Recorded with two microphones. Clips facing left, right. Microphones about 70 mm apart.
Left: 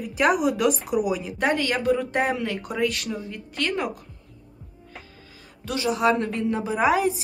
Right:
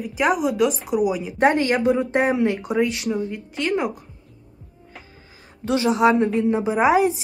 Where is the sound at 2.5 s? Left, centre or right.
Centre.